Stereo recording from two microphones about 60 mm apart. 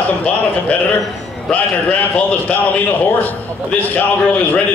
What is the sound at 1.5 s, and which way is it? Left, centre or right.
Speech, left.